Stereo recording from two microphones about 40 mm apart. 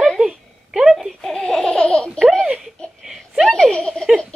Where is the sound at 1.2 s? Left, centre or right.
Centre.